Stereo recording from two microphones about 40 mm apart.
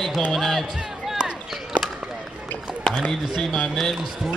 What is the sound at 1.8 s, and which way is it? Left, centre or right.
Run, centre.